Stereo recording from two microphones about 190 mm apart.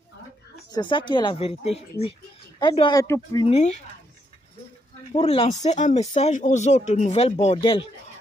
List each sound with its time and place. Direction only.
0.7 s speech: 25° left (ahead or behind)
3.4 s speech: 35° left (ahead or behind)
5.1 s speech: 30° left (ahead or behind)